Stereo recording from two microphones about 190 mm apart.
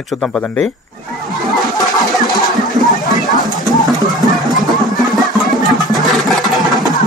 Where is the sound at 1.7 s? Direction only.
20° left (ahead or behind).